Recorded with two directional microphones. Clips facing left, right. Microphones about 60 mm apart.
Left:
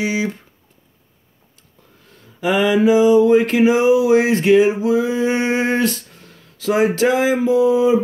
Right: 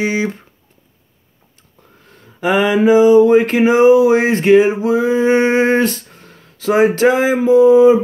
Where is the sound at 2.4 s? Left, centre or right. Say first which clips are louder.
Right 2 dB; right.